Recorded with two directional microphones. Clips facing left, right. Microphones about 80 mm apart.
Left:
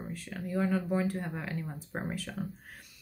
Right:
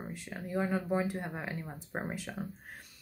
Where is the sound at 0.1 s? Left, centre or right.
Right.